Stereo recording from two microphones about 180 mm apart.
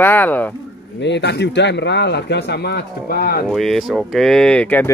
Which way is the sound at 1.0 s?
70° left (ahead or behind).